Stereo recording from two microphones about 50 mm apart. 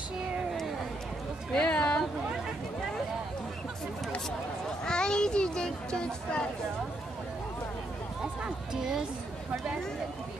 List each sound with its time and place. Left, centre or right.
1.5 s a sound: centre
4.8 s a child's voice: centre
8.2 s music: centre